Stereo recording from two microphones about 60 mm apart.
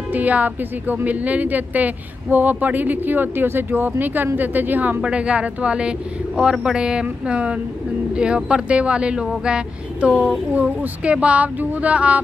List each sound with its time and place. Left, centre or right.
0.1 s a woman's voice: right
5.0 s a woman's voice: centre